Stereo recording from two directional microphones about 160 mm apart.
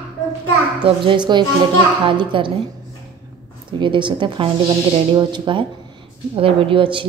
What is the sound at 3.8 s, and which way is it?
A woman's voice, 30° right (ahead or behind).